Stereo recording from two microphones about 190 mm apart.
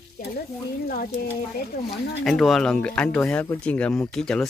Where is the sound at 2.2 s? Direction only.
Centre (ahead or behind).